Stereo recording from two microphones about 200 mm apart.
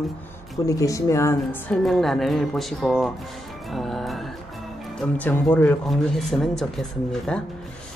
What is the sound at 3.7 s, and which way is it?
Music, centre (ahead or behind).